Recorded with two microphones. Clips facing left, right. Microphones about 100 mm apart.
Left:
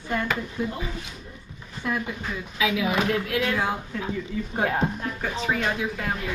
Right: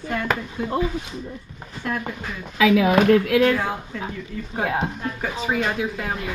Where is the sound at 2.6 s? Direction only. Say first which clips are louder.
Right 8 dB; 55° right (ahead or behind).